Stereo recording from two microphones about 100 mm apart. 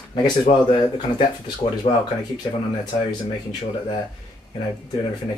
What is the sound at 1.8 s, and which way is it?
Speech, 85° left.